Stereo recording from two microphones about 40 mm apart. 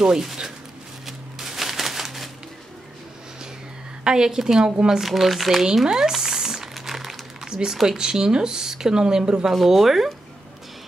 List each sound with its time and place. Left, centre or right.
0.0 s speech: centre
1.0 s a sound: centre
4.0 s speech: centre
5.0 s speech: centre
5.9 s speech: centre
6.2 s typing: centre
7.4 s speech: centre
8.0 s speech: centre
9.7 s speech: centre